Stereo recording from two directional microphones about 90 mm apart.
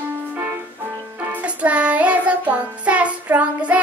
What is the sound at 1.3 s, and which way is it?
Music, 15° right (ahead or behind).